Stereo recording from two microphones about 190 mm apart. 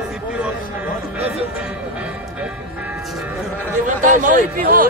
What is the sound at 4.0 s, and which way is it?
Speech, 40° right (ahead or behind).